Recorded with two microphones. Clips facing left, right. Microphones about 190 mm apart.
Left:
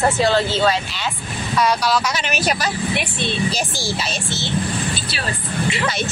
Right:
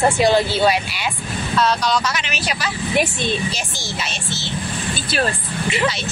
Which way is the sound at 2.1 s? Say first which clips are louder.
Left 4 dB; 45° left (ahead or behind).